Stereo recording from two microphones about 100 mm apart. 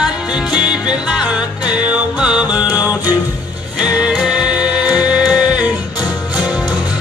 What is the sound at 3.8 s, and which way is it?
Music, 10° right (ahead or behind).